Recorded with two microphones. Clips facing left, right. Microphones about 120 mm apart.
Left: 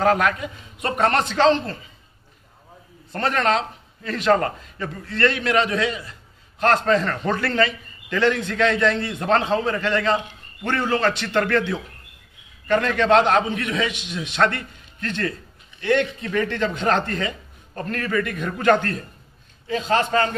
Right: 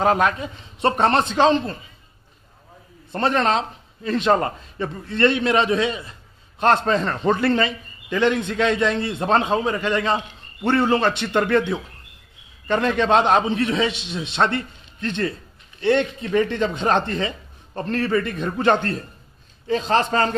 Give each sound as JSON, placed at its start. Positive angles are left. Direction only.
{"t": 0.0, "sound": "a man's voice", "side_deg": -20}
{"t": 3.1, "sound": "a man's voice", "side_deg": -20}
{"t": 19.7, "sound": "a man's voice", "side_deg": -35}